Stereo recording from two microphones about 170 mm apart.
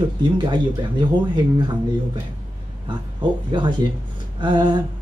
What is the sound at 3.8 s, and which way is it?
Speech, 20° right (ahead or behind).